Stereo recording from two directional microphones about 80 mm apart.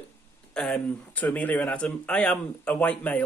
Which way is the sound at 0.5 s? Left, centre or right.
Centre.